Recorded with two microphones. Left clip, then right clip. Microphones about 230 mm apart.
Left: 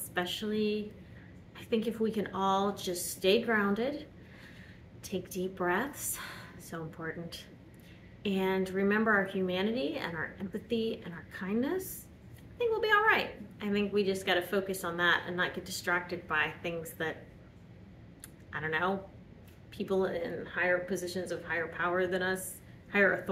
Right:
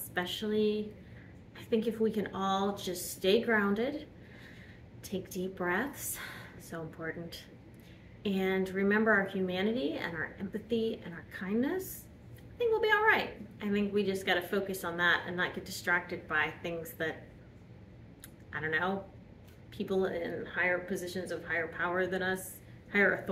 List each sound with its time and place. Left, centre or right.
0.1 s a woman's voice: centre
5.0 s a woman's voice: centre
18.5 s a woman's voice: centre